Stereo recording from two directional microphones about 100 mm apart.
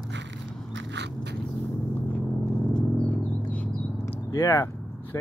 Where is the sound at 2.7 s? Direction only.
15° left (ahead or behind).